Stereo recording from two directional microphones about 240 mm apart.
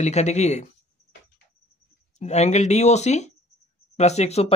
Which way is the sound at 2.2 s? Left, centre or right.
Left.